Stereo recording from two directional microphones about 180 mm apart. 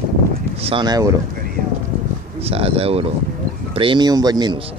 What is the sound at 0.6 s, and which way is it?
Speech, 25° right (ahead or behind).